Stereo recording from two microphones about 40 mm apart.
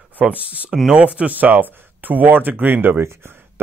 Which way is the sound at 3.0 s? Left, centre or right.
Right.